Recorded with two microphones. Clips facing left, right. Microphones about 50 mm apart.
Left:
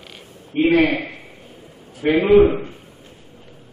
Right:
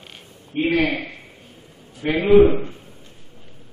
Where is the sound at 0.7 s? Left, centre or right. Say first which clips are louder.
Left 4 dB; left; by 2.7 s centre.